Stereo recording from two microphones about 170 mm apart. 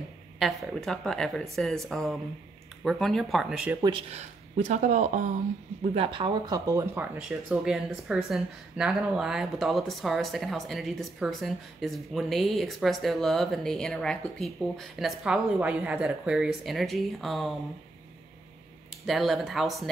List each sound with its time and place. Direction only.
0.4 s speech: centre (ahead or behind)
4.1 s speech: 45° right (ahead or behind)
5.9 s speech: 30° right (ahead or behind)
7.2 s speech: 5° right (ahead or behind)
18.9 s speech: centre (ahead or behind)